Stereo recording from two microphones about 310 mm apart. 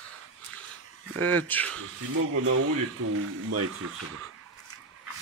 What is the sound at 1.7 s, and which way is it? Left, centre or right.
Speech, right.